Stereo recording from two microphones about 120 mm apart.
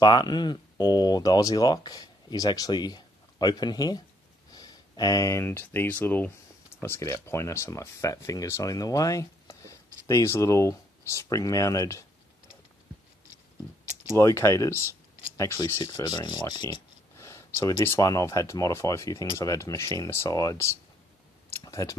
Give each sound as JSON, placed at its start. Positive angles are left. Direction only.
{"t": 0.0, "sound": "speech", "side_deg": 35}
{"t": 14.1, "sound": "speech", "side_deg": 25}
{"t": 15.8, "sound": "speech", "side_deg": 35}
{"t": 17.2, "sound": "speech", "side_deg": 20}
{"t": 21.5, "sound": "a sound", "side_deg": 25}